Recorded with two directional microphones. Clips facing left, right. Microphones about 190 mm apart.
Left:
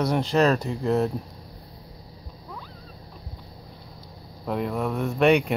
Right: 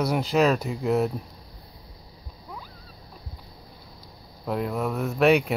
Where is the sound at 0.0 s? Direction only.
5° right (ahead or behind).